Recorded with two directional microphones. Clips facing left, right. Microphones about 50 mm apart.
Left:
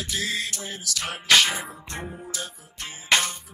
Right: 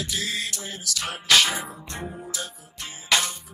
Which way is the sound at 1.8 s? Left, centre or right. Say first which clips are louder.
Right 1 dB; left.